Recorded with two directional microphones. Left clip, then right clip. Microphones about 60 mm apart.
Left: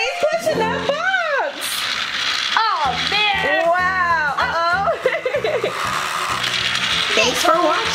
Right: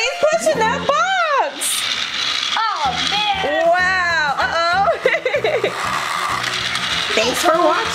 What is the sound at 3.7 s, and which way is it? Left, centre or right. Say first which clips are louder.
Music: right 1 dB; right.